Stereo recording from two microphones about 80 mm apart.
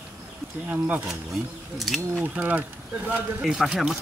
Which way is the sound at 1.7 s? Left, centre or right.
Centre.